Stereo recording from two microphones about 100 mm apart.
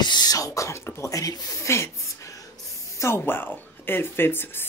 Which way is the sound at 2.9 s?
25° left (ahead or behind).